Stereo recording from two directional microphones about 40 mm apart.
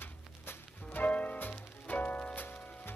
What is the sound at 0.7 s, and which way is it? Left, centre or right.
Music, left.